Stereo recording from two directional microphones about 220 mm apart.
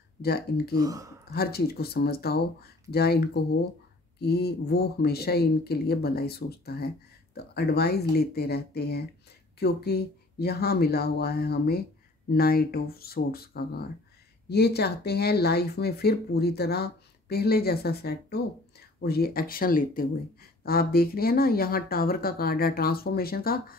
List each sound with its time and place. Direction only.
0.2 s speech: 45° left (ahead or behind)
0.7 s speech: 15° right (ahead or behind)
1.3 s speech: 45° left (ahead or behind)